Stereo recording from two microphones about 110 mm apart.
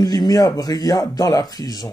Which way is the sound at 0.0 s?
35° left (ahead or behind).